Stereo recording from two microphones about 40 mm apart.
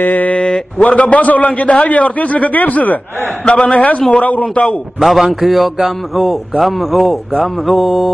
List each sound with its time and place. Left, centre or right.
0.0 s speech: left
0.8 s a man's voice: left
3.4 s a man's voice: left
4.6 s a man's voice: centre